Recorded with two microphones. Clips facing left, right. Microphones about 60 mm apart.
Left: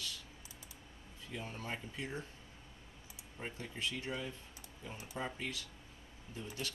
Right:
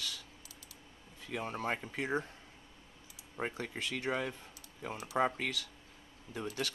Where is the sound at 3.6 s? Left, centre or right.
Right.